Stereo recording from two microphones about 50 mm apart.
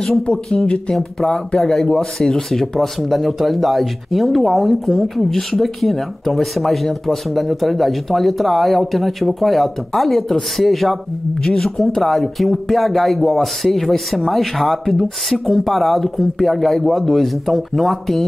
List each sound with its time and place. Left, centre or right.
0.9 s speech: centre